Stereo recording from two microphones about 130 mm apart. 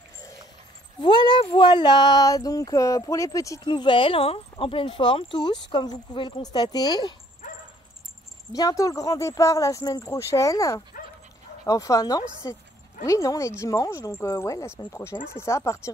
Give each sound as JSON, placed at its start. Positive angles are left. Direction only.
{"t": 1.0, "sound": "speech", "side_deg": 35}
{"t": 3.6, "sound": "speech", "side_deg": 40}
{"t": 8.5, "sound": "speech", "side_deg": 30}